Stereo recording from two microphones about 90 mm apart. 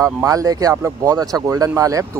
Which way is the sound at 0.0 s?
40° right (ahead or behind).